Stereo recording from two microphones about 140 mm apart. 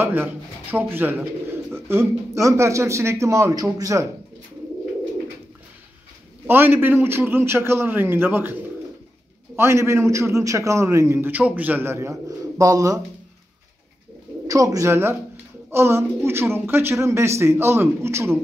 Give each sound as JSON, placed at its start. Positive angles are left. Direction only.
{"t": 0.0, "sound": "a man's voice", "side_deg": -15}
{"t": 6.4, "sound": "speech", "side_deg": -15}
{"t": 9.6, "sound": "a man's voice", "side_deg": -20}
{"t": 14.5, "sound": "a man's voice", "side_deg": -25}